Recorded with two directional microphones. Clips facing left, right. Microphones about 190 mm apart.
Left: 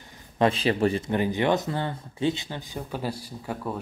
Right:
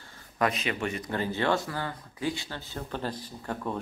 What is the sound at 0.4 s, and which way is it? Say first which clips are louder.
Speech: left 7 dB; 30° left (ahead or behind).